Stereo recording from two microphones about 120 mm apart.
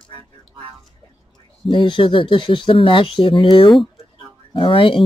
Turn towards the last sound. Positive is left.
turn(degrees=45)  # may be behind; listen again after turning